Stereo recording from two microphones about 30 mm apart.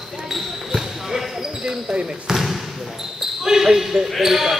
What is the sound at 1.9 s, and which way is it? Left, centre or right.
Speech, right.